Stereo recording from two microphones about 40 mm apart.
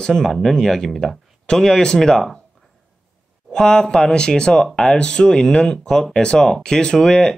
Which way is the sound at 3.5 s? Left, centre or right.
Centre.